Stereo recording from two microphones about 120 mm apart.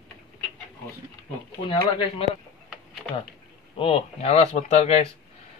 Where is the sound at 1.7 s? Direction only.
50° left (ahead or behind).